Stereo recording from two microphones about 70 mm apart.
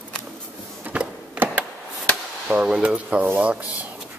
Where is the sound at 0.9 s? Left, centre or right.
Right.